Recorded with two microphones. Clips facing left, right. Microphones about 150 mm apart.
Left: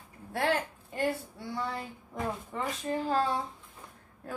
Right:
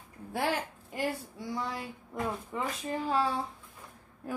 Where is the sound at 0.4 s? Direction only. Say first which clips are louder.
Left 2 dB; 10° right (ahead or behind).